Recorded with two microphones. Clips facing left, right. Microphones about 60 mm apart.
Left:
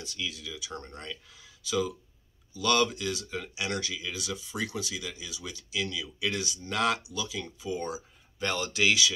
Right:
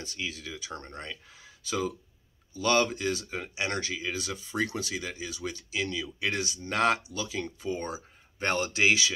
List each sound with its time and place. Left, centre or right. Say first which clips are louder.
0.0 s speech: right 1 dB; right